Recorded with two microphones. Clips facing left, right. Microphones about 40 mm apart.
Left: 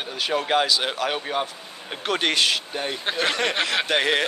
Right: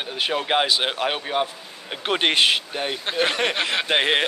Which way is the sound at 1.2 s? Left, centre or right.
Centre.